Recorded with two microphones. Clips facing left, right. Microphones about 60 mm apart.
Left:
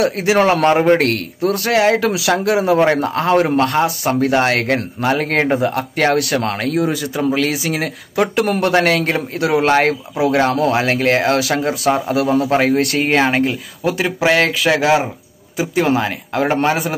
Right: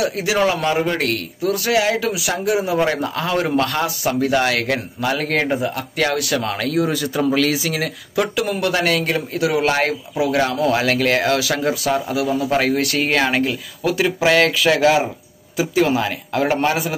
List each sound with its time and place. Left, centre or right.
0.0 s a man's voice: left
2.1 s speech: left
2.8 s speech: left
12.1 s speech: left